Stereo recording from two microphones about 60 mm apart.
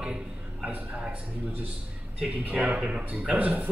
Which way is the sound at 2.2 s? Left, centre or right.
Centre.